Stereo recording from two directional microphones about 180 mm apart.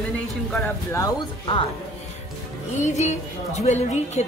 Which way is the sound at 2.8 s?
40° left (ahead or behind).